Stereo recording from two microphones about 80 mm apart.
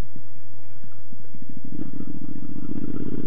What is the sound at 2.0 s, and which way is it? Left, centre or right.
Vehicle, right.